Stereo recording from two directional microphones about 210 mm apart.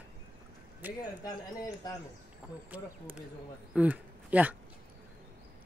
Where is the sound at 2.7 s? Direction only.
5° right (ahead or behind).